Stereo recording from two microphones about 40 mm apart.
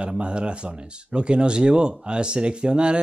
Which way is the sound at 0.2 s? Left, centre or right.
Right.